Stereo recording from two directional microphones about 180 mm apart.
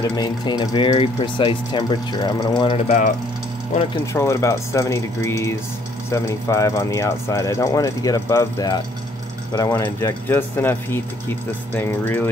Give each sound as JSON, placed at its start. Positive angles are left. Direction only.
{"t": 0.1, "sound": "speech", "side_deg": 25}
{"t": 4.0, "sound": "speech", "side_deg": 15}